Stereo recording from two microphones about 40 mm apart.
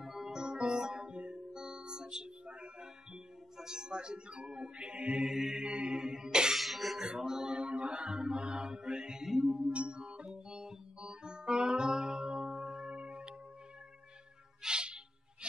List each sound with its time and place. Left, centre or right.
0.0 s music: centre; by 2.9 s right
3.5 s speech: centre
5.3 s mantra: centre
5.6 s mantra: right
5.9 s music: centre
6.5 s music: centre
7.1 s music: centre
7.5 s mantra: right; by 9.5 s centre
9.7 s music: right
10.3 s organ: centre
11.0 s music: right
12.4 s tubular bells: centre
12.8 s music: right
14.6 s music: right